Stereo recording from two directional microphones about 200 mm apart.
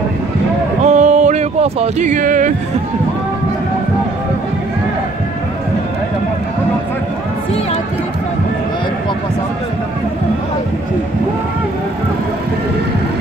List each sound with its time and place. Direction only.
0.8 s music: 35° right (ahead or behind)